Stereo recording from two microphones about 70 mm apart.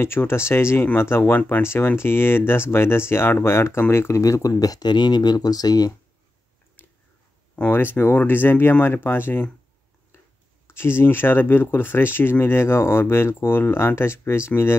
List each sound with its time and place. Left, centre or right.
0.0 s speech: left
4.2 s speech: left
6.8 s a sound: left
7.7 s speech: left
10.1 s a sound: left
10.7 s speech: left